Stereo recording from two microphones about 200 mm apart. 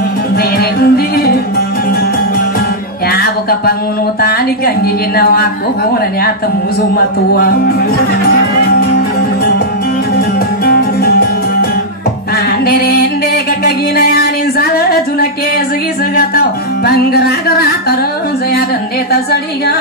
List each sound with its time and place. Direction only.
0.4 s music: 50° left (ahead or behind)
3.1 s music: 50° left (ahead or behind)
4.2 s speech: 50° left (ahead or behind)
7.3 s speech: 50° left (ahead or behind)
10.6 s music: 50° left (ahead or behind)
12.4 s music: 50° left (ahead or behind)